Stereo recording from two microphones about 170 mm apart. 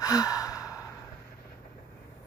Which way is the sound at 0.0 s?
20° left (ahead or behind).